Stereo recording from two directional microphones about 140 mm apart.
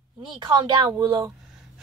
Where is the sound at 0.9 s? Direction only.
20° right (ahead or behind).